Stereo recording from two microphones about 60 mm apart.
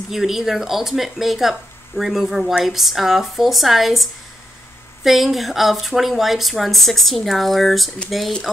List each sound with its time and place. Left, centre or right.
0.1 s speech: centre